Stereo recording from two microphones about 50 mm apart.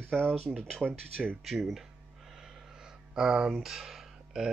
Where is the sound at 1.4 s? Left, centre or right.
Centre.